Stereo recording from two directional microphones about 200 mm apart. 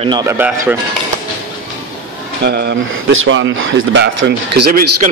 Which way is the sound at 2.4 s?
60° right (ahead or behind).